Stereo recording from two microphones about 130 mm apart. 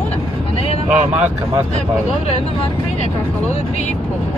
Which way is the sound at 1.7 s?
55° left (ahead or behind).